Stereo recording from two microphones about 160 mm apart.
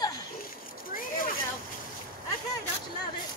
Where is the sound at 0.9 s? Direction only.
60° left (ahead or behind).